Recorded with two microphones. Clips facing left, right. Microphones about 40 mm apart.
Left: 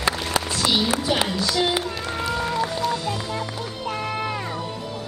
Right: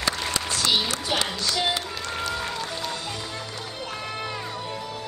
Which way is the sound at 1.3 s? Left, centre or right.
Centre.